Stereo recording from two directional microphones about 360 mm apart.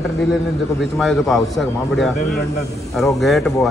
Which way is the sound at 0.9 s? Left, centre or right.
Centre.